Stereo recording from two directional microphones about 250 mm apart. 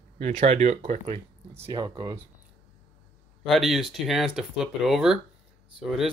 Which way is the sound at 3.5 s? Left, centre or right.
Centre.